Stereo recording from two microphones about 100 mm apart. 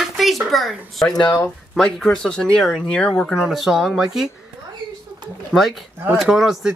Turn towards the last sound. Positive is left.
turn(degrees=0)  # may be behind; listen again after turning